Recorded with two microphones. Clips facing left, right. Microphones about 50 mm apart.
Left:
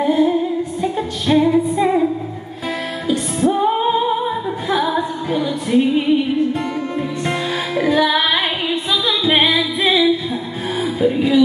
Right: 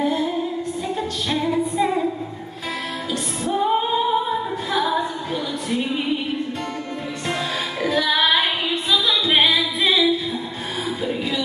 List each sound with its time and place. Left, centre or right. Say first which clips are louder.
0.0 s music: left 6 dB; centre
3.1 s music: left 9 dB; centre
7.2 s music: even; centre